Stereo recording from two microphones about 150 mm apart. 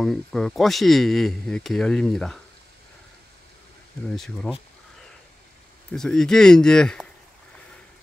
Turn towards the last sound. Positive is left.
turn(degrees=5)  # may be behind; listen again after turning